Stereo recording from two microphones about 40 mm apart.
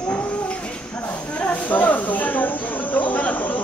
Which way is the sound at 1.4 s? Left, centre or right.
Left.